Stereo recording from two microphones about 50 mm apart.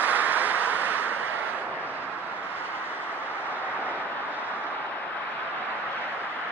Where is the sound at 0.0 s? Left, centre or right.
Right.